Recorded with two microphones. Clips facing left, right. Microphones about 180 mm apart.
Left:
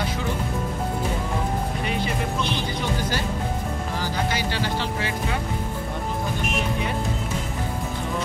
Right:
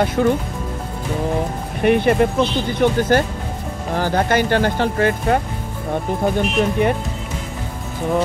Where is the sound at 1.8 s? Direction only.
60° right (ahead or behind).